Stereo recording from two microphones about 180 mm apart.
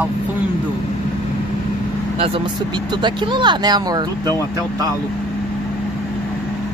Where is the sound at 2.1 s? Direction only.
30° right (ahead or behind).